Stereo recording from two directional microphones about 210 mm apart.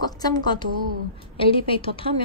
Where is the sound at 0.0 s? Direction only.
20° left (ahead or behind).